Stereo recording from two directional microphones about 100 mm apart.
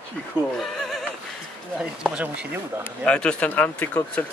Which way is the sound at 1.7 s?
10° right (ahead or behind).